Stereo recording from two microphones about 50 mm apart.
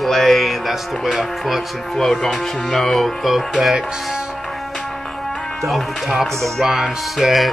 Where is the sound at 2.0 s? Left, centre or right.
Centre.